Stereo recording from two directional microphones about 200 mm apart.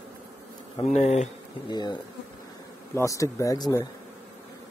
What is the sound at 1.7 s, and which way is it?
Speech, 20° left (ahead or behind).